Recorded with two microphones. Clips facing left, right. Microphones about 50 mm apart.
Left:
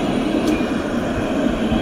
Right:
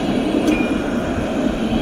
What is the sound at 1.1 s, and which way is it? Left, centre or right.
Vehicle, left.